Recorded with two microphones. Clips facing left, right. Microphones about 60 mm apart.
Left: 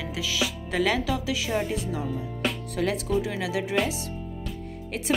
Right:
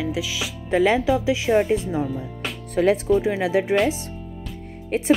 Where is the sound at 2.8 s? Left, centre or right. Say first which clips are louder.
Right 8 dB; right.